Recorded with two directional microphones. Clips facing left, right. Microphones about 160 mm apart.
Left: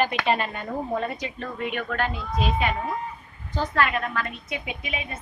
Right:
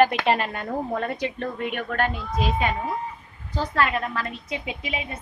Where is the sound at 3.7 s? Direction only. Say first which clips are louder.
Right 1 dB; 30° right (ahead or behind).